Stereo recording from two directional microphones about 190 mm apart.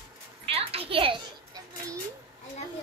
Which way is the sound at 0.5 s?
30° right (ahead or behind).